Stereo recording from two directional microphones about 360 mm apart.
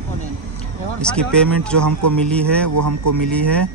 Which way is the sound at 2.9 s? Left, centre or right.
Right.